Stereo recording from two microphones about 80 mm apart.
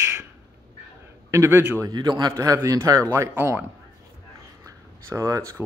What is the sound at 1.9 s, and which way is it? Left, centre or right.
Speech, right.